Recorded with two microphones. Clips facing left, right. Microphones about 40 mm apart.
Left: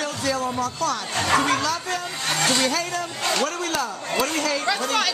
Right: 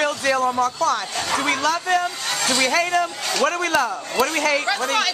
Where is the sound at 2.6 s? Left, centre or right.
Right.